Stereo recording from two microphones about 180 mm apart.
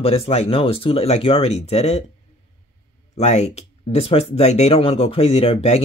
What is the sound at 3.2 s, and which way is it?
Speech, 35° left (ahead or behind).